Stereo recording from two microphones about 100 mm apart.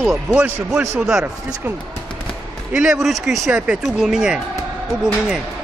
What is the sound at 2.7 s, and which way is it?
A man's voice, 5° right (ahead or behind).